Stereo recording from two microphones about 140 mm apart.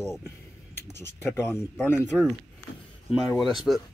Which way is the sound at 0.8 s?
20° left (ahead or behind).